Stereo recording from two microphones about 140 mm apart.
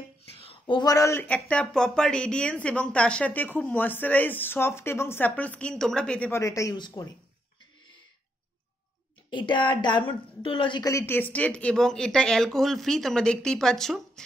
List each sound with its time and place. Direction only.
0.4 s speech: 40° left (ahead or behind); by 6.4 s 10° left (ahead or behind)
6.4 s speech: 20° left (ahead or behind)
9.3 s a woman's voice: 35° left (ahead or behind)
10.9 s speech: 20° left (ahead or behind)